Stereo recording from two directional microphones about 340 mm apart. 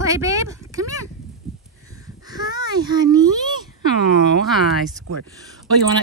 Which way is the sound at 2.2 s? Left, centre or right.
Centre.